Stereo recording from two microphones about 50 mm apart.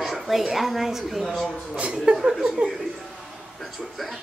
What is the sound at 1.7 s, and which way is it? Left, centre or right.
Speech, right.